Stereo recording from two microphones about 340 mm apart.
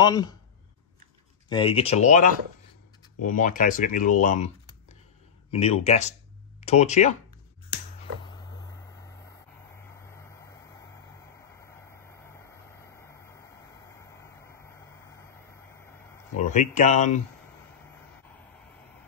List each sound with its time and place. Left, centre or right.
0.0 s speech: centre
1.5 s speech: centre
4.2 s typing: left
5.5 s speech: centre
12.3 s vehicle: centre
16.5 s speech: left